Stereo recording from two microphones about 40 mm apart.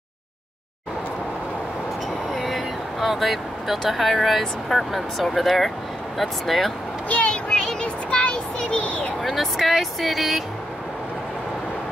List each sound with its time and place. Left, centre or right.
2.3 s vehicle: centre
3.8 s speech: centre
7.1 s child singing: left
9.2 s speech: centre